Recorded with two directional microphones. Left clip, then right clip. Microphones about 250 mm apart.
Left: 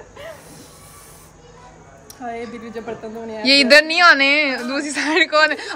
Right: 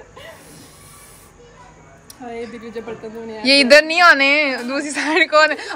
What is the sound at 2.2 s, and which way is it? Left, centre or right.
A woman's voice, centre.